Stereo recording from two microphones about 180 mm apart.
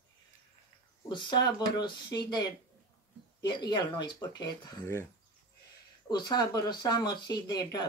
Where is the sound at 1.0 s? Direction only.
25° left (ahead or behind).